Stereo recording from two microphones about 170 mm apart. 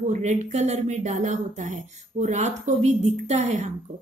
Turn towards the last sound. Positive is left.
turn(degrees=-40)  # may be behind; listen again after turning